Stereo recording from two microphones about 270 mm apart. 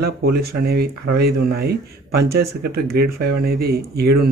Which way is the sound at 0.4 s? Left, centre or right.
Right.